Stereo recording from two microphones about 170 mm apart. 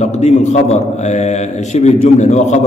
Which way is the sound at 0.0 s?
45° left (ahead or behind).